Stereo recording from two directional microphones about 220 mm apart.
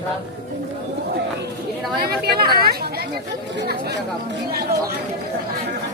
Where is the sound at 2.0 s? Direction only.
45° right (ahead or behind).